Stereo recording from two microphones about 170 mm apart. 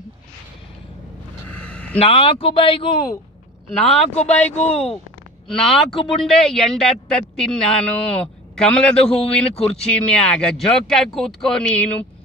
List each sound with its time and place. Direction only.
1.5 s a sound: 10° left (ahead or behind)
2.0 s speech: 35° left (ahead or behind)
4.3 s speech: 10° left (ahead or behind)
4.6 s speech: 40° left (ahead or behind)
5.5 s a man's voice: centre (ahead or behind)